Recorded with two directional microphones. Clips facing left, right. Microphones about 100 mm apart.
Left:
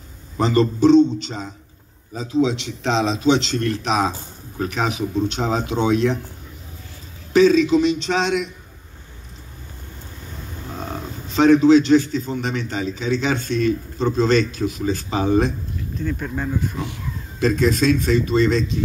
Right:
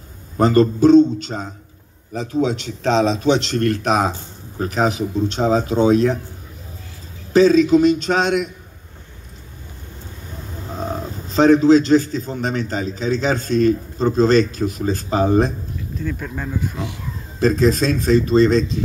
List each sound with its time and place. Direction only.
0.4 s speech: 45° right (ahead or behind)
4.1 s a man's voice: 35° right (ahead or behind)
7.3 s speech: 40° right (ahead or behind)
11.2 s a man's voice: 35° right (ahead or behind)
16.0 s speech: 5° left (ahead or behind)
17.4 s a man's voice: 35° right (ahead or behind)